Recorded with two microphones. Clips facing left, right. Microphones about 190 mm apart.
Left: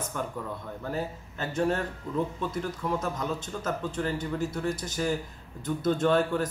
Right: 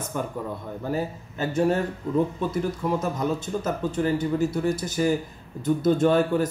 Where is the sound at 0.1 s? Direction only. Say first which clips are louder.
Right 6 dB; 10° right (ahead or behind).